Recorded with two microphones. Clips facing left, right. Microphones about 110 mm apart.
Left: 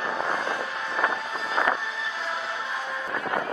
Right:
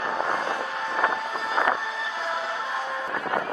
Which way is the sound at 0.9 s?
40° right (ahead or behind).